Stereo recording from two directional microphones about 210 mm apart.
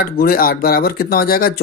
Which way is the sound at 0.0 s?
45° left (ahead or behind).